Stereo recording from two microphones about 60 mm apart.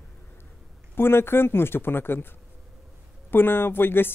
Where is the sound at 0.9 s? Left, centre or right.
Left.